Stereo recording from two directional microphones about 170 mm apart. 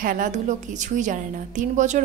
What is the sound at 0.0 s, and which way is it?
A woman's voice, 50° right (ahead or behind).